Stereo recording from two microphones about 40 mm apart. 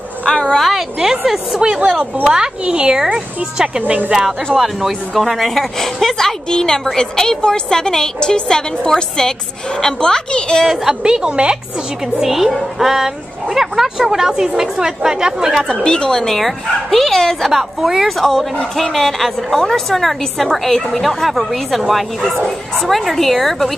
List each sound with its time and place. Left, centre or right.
0.3 s speech: centre
1.2 s a woman's voice: centre
2.2 s a woman's voice: centre
4.6 s a woman's voice: centre
10.6 s a woman's voice: centre
11.0 s a woman's voice: centre
12.2 s a woman's voice: centre
14.3 s a woman's voice: right
15.8 s a woman's voice: left; by 23.7 s centre